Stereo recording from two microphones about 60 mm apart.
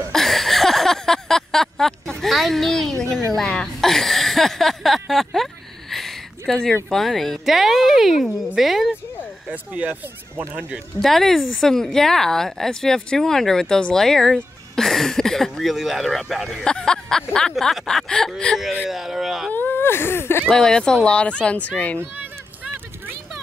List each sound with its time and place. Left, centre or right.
0.1 s a sound: centre
6.9 s speech: centre
9.5 s speech: right
11.0 s speech: centre
16.6 s speech: centre
18.9 s speech: centre
19.5 s a sound: left
20.4 s speech: centre